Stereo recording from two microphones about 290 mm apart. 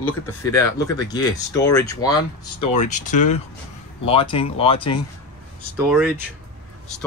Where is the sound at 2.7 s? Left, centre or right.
Left.